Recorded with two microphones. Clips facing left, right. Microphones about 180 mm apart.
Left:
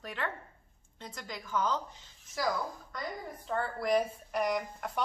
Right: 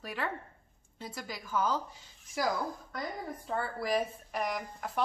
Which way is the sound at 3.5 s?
5° right (ahead or behind).